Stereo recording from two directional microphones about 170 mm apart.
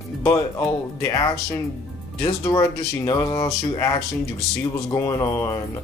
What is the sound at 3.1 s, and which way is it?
Speech, 20° left (ahead or behind).